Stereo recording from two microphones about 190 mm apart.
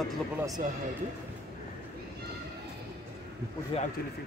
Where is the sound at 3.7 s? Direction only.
30° left (ahead or behind).